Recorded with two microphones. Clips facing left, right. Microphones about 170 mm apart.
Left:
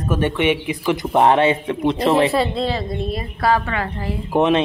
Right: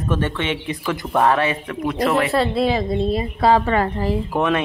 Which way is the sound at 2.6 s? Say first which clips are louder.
Right 4 dB; 15° right (ahead or behind).